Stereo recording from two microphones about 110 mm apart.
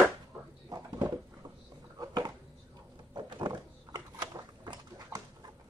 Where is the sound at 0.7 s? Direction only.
35° right (ahead or behind).